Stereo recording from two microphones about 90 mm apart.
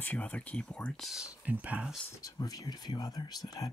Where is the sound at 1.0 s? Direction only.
5° right (ahead or behind).